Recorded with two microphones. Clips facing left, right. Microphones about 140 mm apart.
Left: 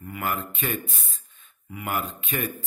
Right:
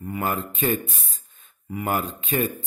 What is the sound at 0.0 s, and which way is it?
Speech, 30° right (ahead or behind).